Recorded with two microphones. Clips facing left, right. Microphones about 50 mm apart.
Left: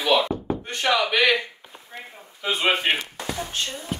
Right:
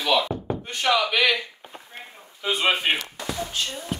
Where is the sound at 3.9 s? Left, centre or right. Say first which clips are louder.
Even; centre.